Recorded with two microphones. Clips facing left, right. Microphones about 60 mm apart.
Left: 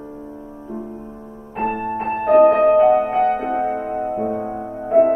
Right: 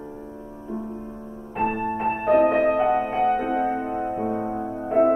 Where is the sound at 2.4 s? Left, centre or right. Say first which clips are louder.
Left 7 dB; left.